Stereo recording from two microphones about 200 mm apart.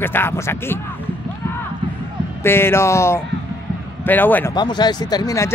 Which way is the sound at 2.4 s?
10° left (ahead or behind).